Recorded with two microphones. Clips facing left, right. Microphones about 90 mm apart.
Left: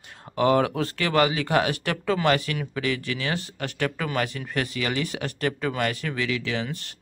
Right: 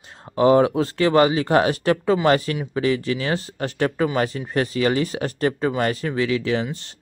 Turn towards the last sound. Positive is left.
turn(degrees=-30)  # may be behind; listen again after turning